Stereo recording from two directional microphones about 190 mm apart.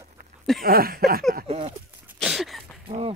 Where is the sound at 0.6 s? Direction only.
50° right (ahead or behind).